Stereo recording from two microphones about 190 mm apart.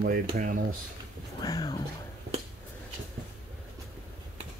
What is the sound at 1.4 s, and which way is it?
Speech, 20° left (ahead or behind).